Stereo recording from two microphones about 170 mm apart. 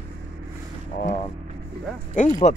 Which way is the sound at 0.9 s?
45° left (ahead or behind).